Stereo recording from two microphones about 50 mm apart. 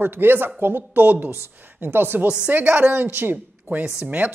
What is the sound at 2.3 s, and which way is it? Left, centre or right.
A woman's voice, right.